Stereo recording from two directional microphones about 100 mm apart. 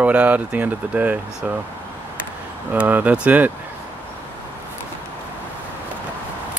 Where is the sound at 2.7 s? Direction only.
15° right (ahead or behind).